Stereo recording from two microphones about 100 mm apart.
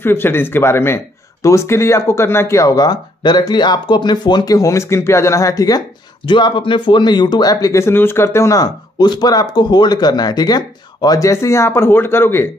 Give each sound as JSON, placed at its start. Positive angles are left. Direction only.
{"t": 0.0, "sound": "speech", "side_deg": 25}
{"t": 4.6, "sound": "speech", "side_deg": 30}